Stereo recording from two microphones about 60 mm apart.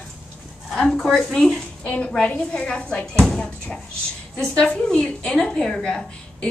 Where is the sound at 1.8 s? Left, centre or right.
Left.